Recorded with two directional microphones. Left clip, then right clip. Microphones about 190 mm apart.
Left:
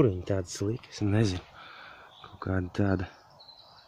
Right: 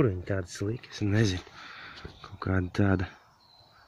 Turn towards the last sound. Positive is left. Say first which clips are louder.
# right 1 dB
turn(degrees=0)  # may be behind; listen again after turning